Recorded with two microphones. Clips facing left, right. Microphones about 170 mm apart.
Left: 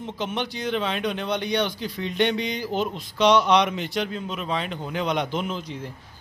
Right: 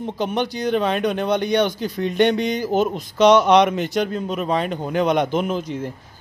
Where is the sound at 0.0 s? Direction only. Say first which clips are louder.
Right 6 dB; 45° right (ahead or behind).